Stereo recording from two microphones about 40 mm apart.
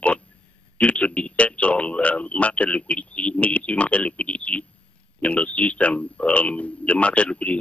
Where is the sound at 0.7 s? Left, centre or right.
Left.